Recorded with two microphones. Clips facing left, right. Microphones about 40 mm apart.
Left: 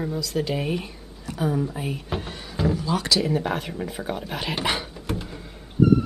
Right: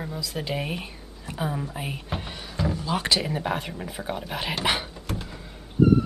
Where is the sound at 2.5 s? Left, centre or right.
Centre.